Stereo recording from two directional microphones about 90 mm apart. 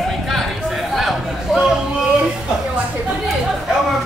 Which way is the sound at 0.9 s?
Centre (ahead or behind).